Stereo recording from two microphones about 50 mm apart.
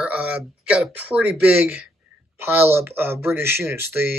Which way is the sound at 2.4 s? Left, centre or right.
Right.